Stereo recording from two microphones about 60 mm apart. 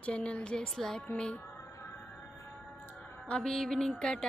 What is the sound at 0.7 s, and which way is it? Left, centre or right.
Speech, centre.